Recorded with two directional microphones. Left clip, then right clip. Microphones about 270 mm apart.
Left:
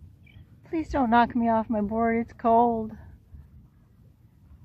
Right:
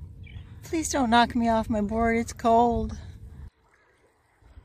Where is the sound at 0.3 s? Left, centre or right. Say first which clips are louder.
Right 1 dB; centre.